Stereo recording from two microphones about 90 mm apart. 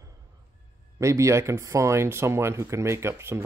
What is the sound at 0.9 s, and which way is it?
Speech, 35° right (ahead or behind).